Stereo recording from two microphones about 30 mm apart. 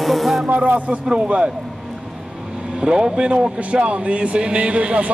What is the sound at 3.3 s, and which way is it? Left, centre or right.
Speech, right.